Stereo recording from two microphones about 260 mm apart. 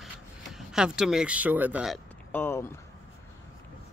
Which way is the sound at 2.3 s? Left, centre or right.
Centre.